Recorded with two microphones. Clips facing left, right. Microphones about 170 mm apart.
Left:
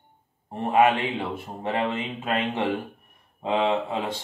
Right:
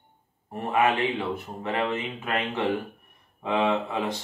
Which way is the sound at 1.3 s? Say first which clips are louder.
Left 1 dB; 25° left (ahead or behind).